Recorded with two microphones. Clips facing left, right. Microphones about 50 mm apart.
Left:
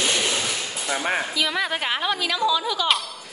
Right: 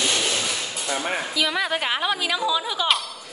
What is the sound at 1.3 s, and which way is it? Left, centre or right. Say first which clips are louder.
Speech: right 1 dB; centre.